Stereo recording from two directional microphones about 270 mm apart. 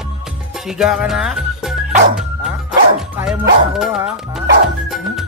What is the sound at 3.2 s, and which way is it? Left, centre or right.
Speech, centre.